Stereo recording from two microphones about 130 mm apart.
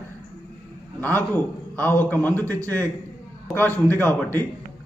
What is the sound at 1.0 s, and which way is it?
A man's voice, 15° left (ahead or behind).